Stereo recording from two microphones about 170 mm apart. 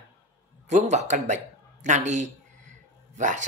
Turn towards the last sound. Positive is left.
turn(degrees=-45)  # may be behind; listen again after turning